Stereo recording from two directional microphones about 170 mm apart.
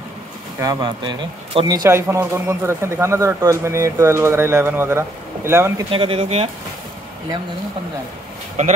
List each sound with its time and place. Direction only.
0.6 s speech: 25° right (ahead or behind)
5.9 s speech: 35° right (ahead or behind)